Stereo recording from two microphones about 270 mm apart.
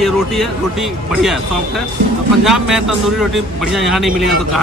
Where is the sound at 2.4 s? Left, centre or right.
Centre.